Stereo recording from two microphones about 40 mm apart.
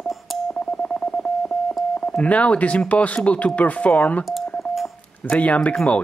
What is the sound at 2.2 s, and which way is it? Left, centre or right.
Speech, left.